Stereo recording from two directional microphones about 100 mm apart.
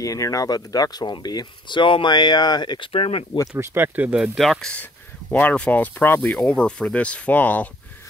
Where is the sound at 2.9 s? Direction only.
70° left (ahead or behind).